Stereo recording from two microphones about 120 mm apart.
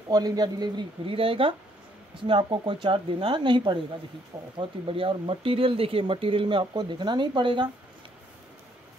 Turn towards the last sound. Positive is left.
turn(degrees=-40)  # may be behind; listen again after turning